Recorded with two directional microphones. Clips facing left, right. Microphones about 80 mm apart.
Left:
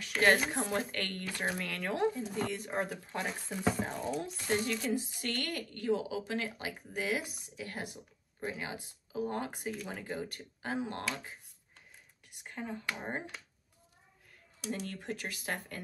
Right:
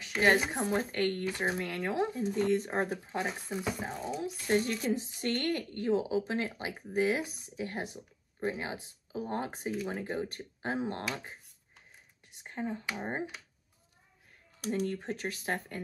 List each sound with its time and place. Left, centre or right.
0.0 s speech: centre
2.5 s speech: right
3.1 s speech: centre
4.6 s speech: right
12.3 s speech: right
12.8 s speech: centre
14.9 s speech: right